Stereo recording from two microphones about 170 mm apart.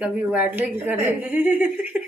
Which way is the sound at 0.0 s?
10° right (ahead or behind).